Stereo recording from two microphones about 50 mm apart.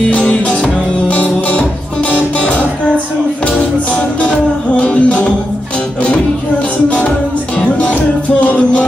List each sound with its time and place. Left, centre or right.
0.1 s music: left
4.2 s music: left
7.5 s music: left